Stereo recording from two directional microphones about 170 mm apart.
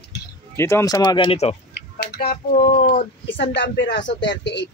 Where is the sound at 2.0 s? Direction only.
70° left (ahead or behind).